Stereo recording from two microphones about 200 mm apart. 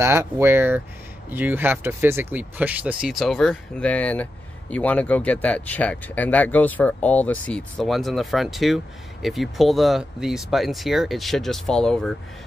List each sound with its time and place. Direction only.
0.0 s speech: 10° right (ahead or behind); by 12.1 s 5° left (ahead or behind)